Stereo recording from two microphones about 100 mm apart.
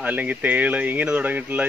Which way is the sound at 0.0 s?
15° right (ahead or behind).